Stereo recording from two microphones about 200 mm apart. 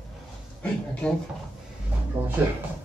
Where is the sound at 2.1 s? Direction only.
30° right (ahead or behind).